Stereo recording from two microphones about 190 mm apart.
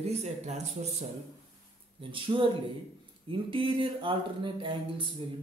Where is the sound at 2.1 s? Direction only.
25° right (ahead or behind).